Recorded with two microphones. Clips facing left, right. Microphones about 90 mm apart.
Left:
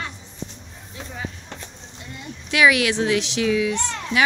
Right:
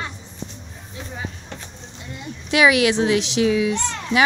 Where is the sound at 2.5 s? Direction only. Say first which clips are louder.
Right 2 dB; 20° right (ahead or behind).